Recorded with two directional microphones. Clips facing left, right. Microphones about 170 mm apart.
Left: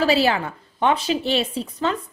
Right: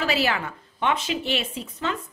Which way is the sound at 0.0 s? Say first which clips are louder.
Left 6 dB; 30° left (ahead or behind).